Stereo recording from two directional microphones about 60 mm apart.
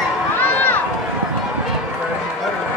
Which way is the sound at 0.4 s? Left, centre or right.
Left.